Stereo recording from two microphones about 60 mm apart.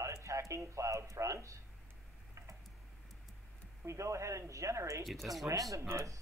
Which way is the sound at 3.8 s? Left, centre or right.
Right.